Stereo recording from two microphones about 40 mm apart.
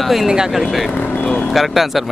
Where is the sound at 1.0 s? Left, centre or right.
Left.